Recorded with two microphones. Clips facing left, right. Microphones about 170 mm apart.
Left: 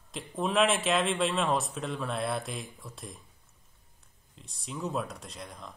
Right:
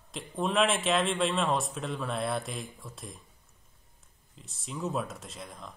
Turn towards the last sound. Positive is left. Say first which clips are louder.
# even
turn(degrees=0)  # may be behind; listen again after turning